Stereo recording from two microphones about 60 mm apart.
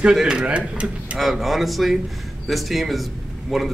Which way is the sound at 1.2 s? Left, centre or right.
Centre.